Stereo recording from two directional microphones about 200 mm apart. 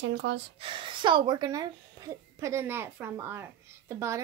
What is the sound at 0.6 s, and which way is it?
Speech, 25° right (ahead or behind).